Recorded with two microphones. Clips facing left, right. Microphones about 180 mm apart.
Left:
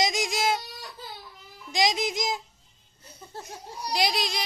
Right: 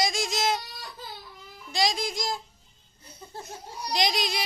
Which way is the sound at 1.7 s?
20° left (ahead or behind).